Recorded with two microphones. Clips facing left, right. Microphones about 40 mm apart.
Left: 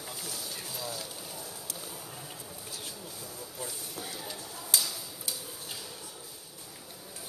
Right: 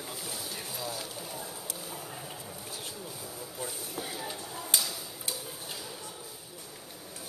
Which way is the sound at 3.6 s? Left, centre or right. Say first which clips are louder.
Right 3 dB; centre.